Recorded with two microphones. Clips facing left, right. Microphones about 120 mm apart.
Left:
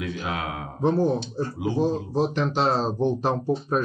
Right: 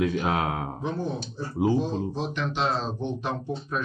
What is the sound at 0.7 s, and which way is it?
Speech, 40° left (ahead or behind).